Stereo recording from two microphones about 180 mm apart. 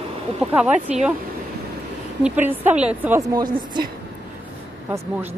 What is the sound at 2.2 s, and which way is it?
Speech, 10° right (ahead or behind).